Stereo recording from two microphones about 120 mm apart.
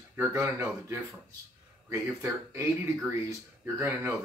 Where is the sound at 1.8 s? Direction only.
20° right (ahead or behind).